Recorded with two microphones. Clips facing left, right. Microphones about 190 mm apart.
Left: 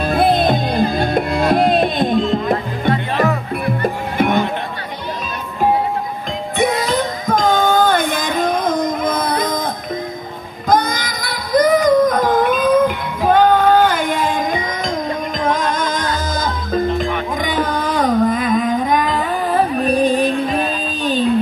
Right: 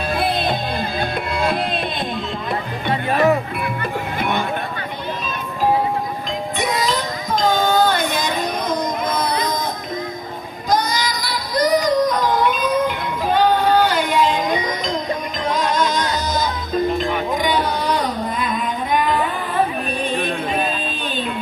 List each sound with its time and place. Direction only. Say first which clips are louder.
0.0 s music: left 6 dB; 45° left (ahead or behind)
6.6 s music: left 6 dB; 55° left (ahead or behind)
10.7 s music: left 3 dB; 50° left (ahead or behind)
21.0 s a sound: left 8 dB; 40° left (ahead or behind)